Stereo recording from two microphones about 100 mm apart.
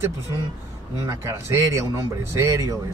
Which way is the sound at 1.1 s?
25° right (ahead or behind).